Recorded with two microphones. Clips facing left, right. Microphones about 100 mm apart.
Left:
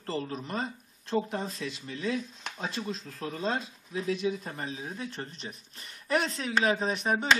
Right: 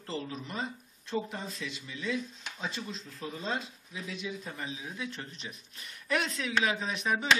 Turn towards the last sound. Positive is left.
turn(degrees=40)  # may be behind; listen again after turning